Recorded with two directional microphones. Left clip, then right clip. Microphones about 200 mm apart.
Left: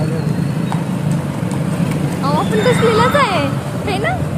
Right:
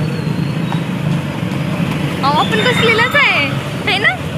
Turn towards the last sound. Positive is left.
turn(degrees=15)  # may be behind; listen again after turning